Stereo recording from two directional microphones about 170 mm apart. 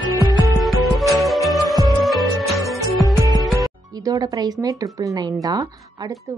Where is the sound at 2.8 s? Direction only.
20° right (ahead or behind).